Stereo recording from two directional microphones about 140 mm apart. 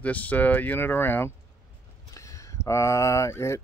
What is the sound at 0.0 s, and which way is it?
Speech, 10° left (ahead or behind).